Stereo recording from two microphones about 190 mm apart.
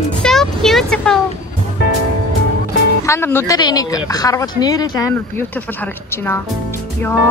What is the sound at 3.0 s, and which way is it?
A woman's voice, 15° left (ahead or behind).